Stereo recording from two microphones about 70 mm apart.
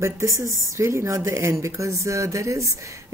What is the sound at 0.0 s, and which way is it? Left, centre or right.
Speech, right.